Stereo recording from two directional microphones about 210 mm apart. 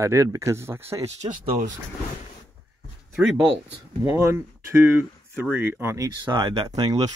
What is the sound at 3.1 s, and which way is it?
Speech, centre (ahead or behind).